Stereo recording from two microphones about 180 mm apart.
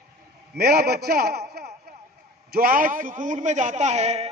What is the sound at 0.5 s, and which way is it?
A man's voice, 60° right (ahead or behind).